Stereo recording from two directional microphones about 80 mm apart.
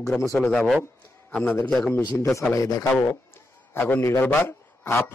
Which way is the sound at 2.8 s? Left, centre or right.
Left.